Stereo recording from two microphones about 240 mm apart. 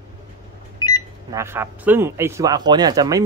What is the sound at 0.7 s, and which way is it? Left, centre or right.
Microwave oven, centre.